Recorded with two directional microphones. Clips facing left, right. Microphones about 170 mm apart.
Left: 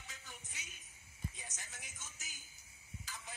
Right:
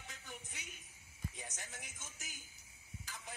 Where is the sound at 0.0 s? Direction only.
55° right (ahead or behind).